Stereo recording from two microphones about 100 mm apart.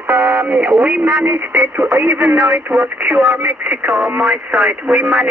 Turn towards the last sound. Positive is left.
turn(degrees=-5)  # may be behind; listen again after turning